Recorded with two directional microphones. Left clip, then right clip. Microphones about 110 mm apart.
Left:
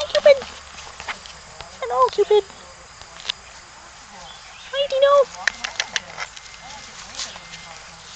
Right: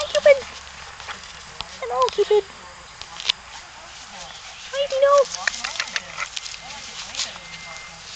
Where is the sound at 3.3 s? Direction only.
10° left (ahead or behind).